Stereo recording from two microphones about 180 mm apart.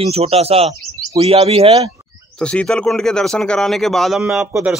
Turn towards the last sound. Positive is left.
turn(degrees=-10)  # may be behind; listen again after turning